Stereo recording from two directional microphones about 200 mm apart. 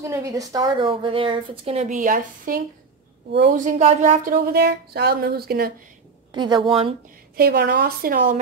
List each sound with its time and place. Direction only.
0.0 s a woman's voice: 15° right (ahead or behind); by 2.6 s 45° right (ahead or behind)
3.3 s a woman's voice: 60° right (ahead or behind)
3.5 s speech: 35° right (ahead or behind)
6.3 s a woman's voice: 20° right (ahead or behind)
7.3 s speech: 50° right (ahead or behind)